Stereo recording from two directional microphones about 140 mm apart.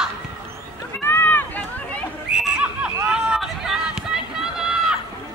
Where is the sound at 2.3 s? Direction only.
5° right (ahead or behind).